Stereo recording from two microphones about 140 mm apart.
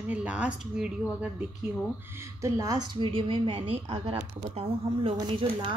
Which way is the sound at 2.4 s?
25° right (ahead or behind).